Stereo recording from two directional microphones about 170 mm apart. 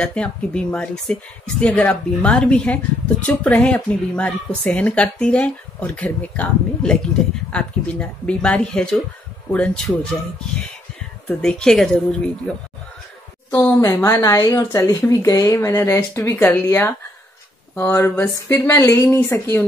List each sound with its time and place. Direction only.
0.0 s speech: 5° left (ahead or behind)
11.2 s speech: 5° left (ahead or behind)
13.5 s speech: 15° left (ahead or behind)